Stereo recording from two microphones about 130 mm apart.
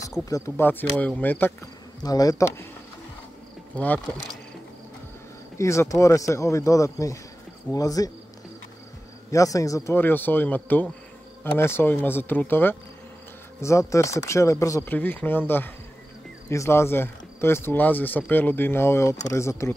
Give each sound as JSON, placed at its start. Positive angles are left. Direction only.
{"t": 0.2, "sound": "speech", "side_deg": 20}
{"t": 2.0, "sound": "speech", "side_deg": 30}
{"t": 3.7, "sound": "speech", "side_deg": 15}
{"t": 5.6, "sound": "speech", "side_deg": 25}
{"t": 9.3, "sound": "speech", "side_deg": 25}
{"t": 14.9, "sound": "speech", "side_deg": 15}